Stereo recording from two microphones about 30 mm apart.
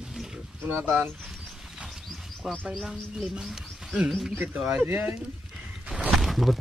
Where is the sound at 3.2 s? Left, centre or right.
Centre.